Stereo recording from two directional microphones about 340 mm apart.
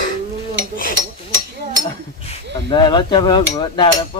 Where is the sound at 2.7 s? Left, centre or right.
Centre.